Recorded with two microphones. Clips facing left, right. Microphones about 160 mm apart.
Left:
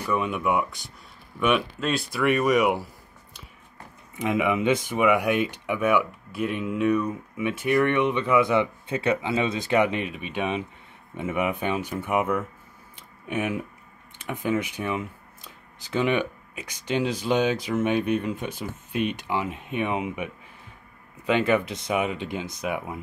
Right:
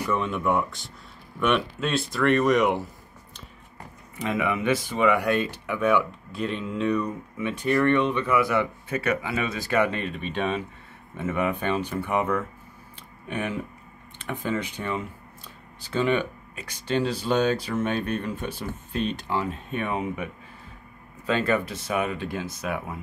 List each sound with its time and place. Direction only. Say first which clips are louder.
0.1 s speech: left 1 dB; 10° left (ahead or behind)
4.2 s speech: left 3 dB; 15° left (ahead or behind)
12.9 s a sound: left 3 dB; 15° left (ahead or behind)
14.2 s speech: left 2 dB; 15° left (ahead or behind)
21.3 s speech: left 2 dB; 15° left (ahead or behind)